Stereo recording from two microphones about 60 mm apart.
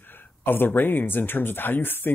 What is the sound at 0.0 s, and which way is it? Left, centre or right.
Speech, left.